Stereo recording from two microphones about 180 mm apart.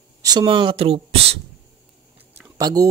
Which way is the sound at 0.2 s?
25° right (ahead or behind).